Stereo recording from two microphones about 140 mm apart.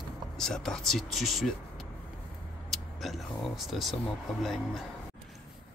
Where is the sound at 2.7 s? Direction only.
Centre (ahead or behind).